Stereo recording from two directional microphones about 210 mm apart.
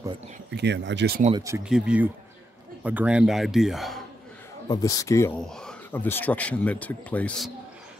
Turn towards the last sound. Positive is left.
turn(degrees=5)  # may be behind; listen again after turning